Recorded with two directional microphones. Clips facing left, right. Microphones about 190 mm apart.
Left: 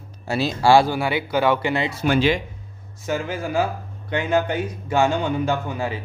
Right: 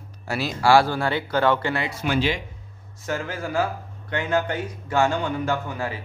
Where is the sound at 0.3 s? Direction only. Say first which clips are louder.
Left 2 dB; 25° left (ahead or behind).